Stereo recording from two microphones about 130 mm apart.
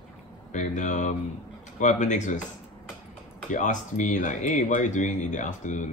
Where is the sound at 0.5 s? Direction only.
70° left (ahead or behind).